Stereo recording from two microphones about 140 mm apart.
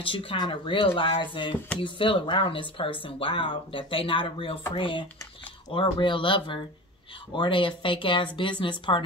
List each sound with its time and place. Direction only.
0.0 s speech: 40° left (ahead or behind)